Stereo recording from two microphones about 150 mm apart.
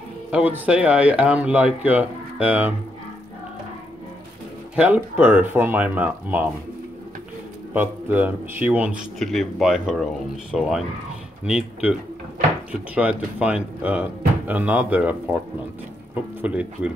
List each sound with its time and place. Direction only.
0.3 s speech: 10° right (ahead or behind)
4.7 s speech: 10° right (ahead or behind)
7.7 s speech: 10° right (ahead or behind)
9.2 s speech: centre (ahead or behind)
16.3 s speech: 10° right (ahead or behind)